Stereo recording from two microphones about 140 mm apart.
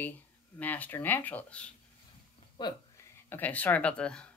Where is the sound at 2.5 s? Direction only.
30° left (ahead or behind).